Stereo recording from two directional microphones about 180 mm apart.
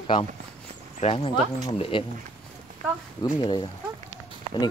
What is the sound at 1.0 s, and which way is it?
Speech, 30° left (ahead or behind).